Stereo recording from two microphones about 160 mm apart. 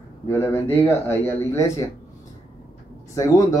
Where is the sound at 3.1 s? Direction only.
20° left (ahead or behind).